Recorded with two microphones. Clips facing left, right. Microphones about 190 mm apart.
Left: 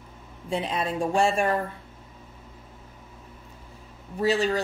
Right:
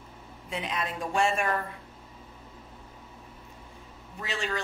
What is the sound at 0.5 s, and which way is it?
A woman's voice, 30° left (ahead or behind).